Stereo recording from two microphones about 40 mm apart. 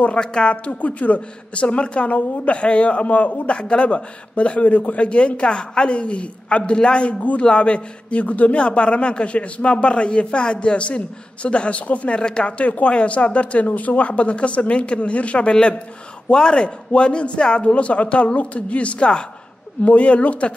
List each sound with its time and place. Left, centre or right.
0.0 s speech: left
12.2 s speech: left
15.5 s speech: centre
19.8 s speech: left